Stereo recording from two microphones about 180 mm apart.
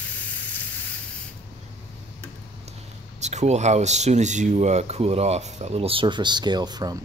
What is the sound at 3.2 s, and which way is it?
Speech, 40° right (ahead or behind).